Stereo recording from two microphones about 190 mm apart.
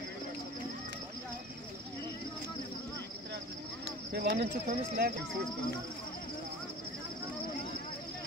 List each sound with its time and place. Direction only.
4.1 s speech: 60° right (ahead or behind)